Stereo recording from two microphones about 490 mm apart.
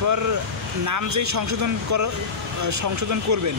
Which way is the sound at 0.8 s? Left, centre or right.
Right.